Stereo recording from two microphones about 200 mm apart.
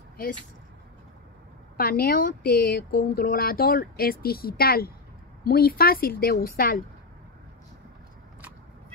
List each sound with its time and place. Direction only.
1.8 s speech: 45° left (ahead or behind)